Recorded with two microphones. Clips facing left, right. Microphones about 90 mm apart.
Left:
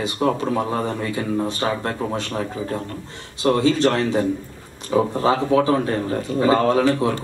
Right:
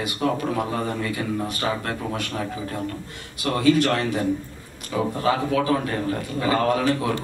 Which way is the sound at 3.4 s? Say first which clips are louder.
Left 2 dB; 25° left (ahead or behind).